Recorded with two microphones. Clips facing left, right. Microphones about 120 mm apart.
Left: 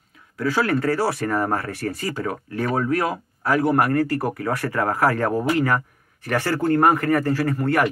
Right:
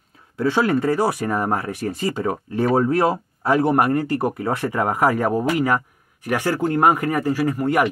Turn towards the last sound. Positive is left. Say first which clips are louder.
# right 1 dB
turn(degrees=-15)  # may be behind; listen again after turning